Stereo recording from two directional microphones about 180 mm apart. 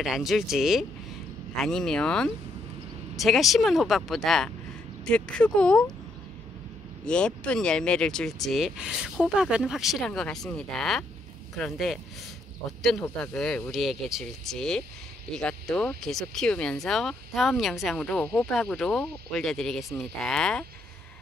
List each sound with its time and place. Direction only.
0.0 s speech: centre (ahead or behind)
7.1 s speech: 5° left (ahead or behind)